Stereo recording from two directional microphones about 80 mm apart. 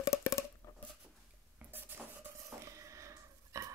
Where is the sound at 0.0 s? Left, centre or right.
Left.